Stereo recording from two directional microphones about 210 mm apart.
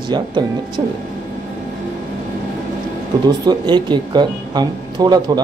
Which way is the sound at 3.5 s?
20° right (ahead or behind).